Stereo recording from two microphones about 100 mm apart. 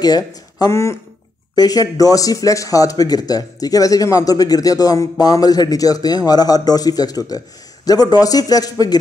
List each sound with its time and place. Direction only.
0.0 s speech: 40° left (ahead or behind)
1.5 s speech: 40° left (ahead or behind)